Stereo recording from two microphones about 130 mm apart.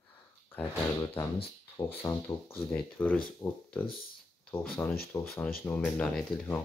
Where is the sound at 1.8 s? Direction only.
15° left (ahead or behind).